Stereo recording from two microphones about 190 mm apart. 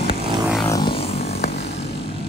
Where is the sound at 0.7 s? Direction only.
25° left (ahead or behind).